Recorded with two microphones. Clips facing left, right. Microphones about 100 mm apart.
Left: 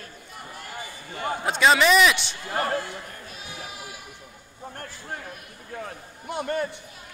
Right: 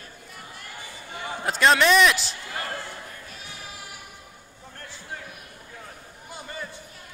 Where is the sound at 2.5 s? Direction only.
45° left (ahead or behind).